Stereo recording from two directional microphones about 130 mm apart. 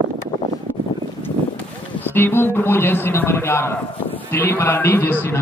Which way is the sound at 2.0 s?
15° left (ahead or behind).